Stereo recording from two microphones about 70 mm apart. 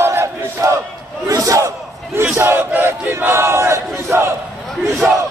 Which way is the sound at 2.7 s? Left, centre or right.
Right.